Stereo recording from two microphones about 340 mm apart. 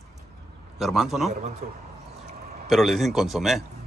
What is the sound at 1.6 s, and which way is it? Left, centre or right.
Speech, right.